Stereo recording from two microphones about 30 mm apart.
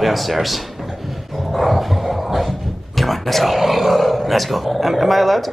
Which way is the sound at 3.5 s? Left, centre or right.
Centre.